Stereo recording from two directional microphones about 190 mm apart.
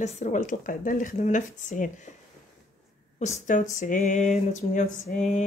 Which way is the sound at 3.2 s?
40° left (ahead or behind).